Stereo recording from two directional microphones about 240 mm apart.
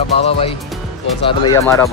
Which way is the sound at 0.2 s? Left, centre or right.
Left.